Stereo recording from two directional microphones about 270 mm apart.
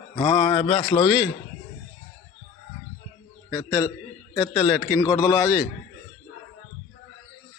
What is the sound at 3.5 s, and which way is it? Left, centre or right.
A man's voice, centre.